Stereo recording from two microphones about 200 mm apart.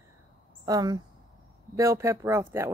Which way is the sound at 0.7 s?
20° right (ahead or behind).